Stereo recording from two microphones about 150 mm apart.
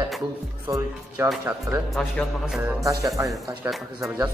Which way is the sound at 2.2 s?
10° left (ahead or behind).